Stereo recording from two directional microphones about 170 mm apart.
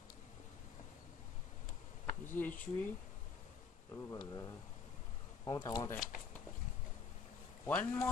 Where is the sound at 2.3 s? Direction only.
10° left (ahead or behind).